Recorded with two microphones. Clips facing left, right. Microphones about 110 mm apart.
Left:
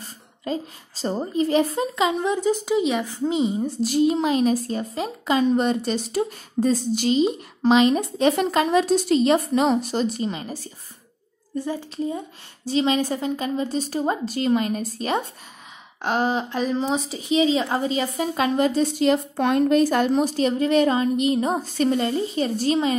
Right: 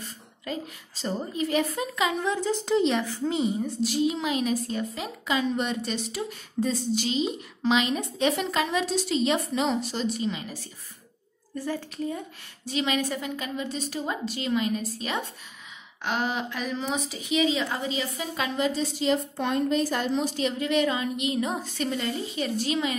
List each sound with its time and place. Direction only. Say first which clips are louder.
0.0 s a woman's voice: left 5 dB; 35° left (ahead or behind); by 3.1 s 10° left (ahead or behind)
3.1 s a woman's voice: left 4 dB; 20° left (ahead or behind)
3.8 s a woman's voice: left 7 dB; 45° left (ahead or behind)
11.5 s a woman's voice: left 4 dB; 20° left (ahead or behind)
12.6 s speech: left 6 dB; 30° left (ahead or behind)